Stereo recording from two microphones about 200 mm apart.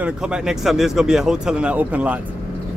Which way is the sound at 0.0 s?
5° right (ahead or behind).